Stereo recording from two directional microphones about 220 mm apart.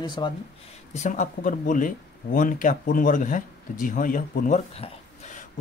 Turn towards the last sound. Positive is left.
turn(degrees=35)  # may be behind; listen again after turning